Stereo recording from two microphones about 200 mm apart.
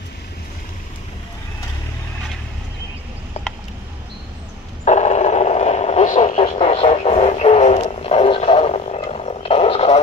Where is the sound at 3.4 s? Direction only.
35° left (ahead or behind).